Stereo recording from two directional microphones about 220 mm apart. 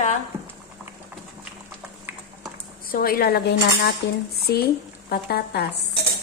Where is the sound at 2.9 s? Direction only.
45° left (ahead or behind).